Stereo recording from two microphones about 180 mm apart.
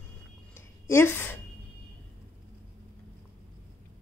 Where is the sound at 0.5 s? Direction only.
15° left (ahead or behind).